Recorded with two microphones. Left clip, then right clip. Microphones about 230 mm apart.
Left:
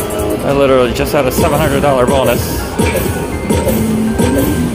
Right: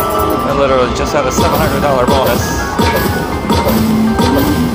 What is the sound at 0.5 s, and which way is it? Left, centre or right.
Speech, left.